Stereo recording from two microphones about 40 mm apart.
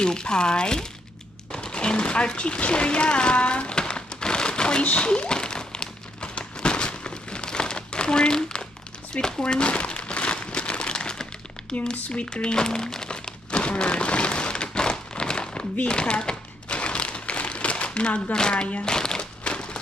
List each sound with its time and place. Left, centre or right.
0.0 s speech: centre
1.5 s a sound: left
9.1 s crumpling: left
12.0 s speech: left
12.3 s crumpling: left
15.9 s a sound: left